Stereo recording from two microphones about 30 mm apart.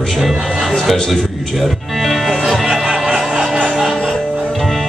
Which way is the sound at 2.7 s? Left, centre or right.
Right.